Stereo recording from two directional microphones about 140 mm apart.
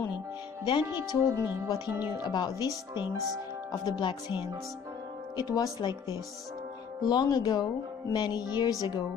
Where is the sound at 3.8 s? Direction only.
30° left (ahead or behind).